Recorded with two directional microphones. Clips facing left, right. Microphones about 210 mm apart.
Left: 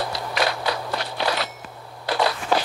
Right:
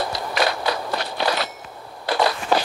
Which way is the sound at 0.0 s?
45° right (ahead or behind).